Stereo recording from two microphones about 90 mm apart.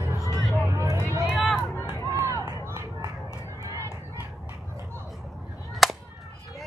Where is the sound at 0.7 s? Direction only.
35° right (ahead or behind).